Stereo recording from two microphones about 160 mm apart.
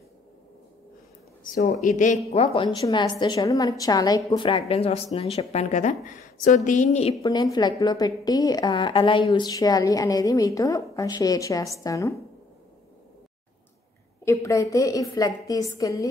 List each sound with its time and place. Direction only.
1.4 s a woman's voice: 55° left (ahead or behind)
7.2 s a woman's voice: 20° left (ahead or behind)
14.2 s a woman's voice: 20° left (ahead or behind)